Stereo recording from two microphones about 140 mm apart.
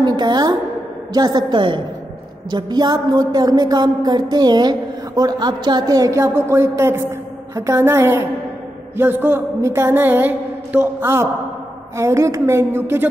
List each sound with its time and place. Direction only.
0.0 s a woman's voice: 30° right (ahead or behind)